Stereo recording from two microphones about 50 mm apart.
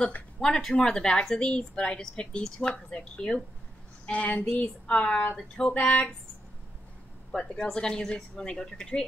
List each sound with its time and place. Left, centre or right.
0.4 s a woman's voice: centre
4.0 s female singing: left
4.5 s speech: left
7.3 s a woman's voice: centre